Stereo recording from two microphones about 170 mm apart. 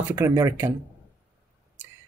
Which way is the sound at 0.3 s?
20° right (ahead or behind).